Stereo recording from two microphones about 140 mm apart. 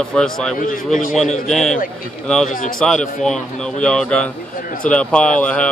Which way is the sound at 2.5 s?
70° left (ahead or behind).